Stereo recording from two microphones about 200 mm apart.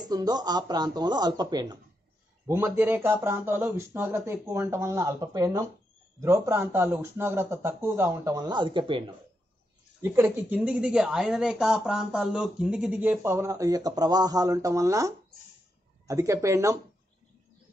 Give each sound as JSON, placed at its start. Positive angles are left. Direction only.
{"t": 0.1, "sound": "speech", "side_deg": -20}
{"t": 10.0, "sound": "speech", "side_deg": -10}